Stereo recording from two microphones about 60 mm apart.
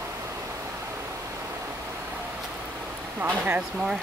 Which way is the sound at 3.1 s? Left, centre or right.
Right.